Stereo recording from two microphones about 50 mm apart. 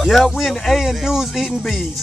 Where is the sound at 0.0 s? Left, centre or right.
Centre.